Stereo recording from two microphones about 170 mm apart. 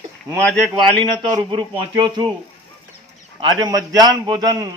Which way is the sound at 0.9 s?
25° right (ahead or behind).